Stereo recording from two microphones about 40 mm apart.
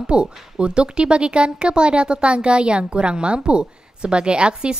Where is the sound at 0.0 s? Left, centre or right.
Right.